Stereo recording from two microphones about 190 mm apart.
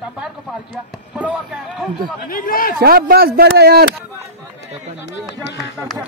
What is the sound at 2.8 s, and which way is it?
Speech, 55° right (ahead or behind).